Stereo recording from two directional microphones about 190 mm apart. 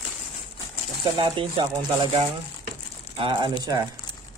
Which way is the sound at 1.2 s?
25° right (ahead or behind).